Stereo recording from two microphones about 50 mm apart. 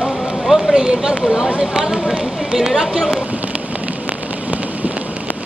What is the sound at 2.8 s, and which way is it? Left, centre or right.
Speech, centre.